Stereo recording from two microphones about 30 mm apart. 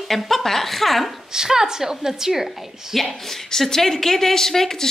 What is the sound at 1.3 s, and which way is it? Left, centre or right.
A woman's voice, centre.